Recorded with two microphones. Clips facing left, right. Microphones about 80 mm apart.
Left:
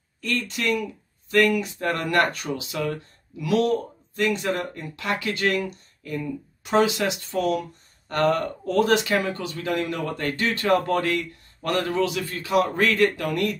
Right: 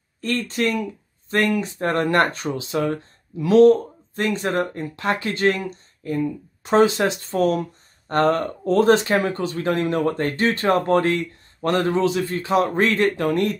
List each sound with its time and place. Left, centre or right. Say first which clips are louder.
0.2 s speech: right 4 dB; right